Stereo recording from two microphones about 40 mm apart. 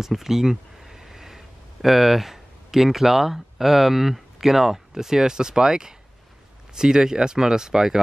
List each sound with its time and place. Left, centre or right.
0.0 s speech: centre